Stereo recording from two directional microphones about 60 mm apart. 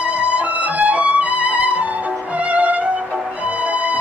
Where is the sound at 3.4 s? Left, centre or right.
Right.